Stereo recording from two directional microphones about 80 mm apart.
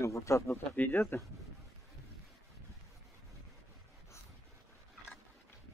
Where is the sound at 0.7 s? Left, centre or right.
Left.